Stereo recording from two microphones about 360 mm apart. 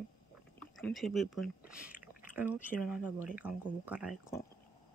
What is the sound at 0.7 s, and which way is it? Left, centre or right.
Speech, centre.